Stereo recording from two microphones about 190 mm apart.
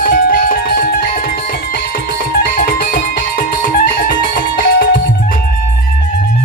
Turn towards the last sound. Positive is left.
turn(degrees=50)  # may be behind; listen again after turning